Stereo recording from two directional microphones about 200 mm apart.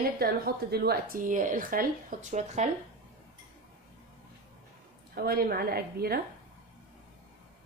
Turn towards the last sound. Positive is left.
turn(degrees=-50)  # may be behind; listen again after turning